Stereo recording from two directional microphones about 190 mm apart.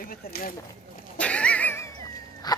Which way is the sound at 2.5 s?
20° left (ahead or behind).